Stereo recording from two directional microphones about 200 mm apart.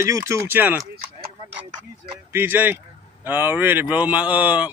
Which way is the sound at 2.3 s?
10° right (ahead or behind).